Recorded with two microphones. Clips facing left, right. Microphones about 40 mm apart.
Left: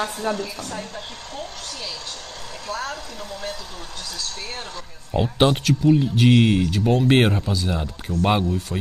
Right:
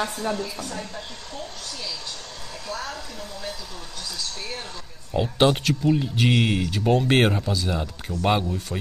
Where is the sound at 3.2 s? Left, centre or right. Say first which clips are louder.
Left 3 dB; left.